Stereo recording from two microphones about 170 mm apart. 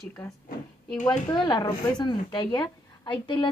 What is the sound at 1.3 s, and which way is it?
A woman's voice, 25° left (ahead or behind).